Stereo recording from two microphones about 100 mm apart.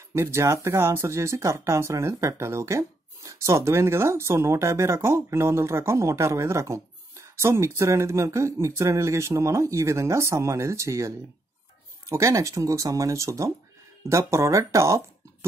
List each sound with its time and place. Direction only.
0.1 s speech: 25° right (ahead or behind)